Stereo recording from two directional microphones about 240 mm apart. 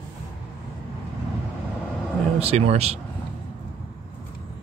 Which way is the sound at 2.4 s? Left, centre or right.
Right.